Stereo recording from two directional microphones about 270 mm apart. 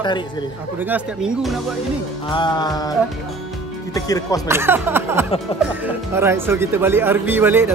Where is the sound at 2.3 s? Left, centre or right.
Centre.